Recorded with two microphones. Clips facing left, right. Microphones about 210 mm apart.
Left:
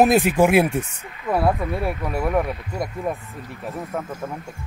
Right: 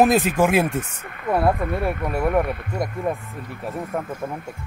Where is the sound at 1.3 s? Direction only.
Centre (ahead or behind).